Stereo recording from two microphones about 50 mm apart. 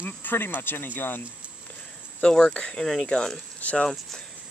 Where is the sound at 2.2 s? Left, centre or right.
Centre.